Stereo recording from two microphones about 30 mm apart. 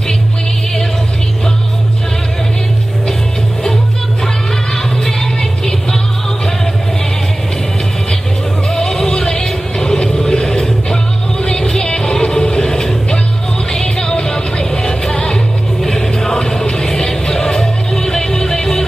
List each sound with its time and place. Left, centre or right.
5.4 s music: left
8.7 s music: centre